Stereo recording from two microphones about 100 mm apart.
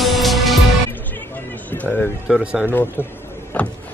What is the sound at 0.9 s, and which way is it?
Music, 20° left (ahead or behind).